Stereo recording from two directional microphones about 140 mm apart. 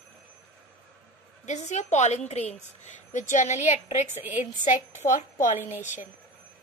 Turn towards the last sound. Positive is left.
turn(degrees=65)  # may be behind; listen again after turning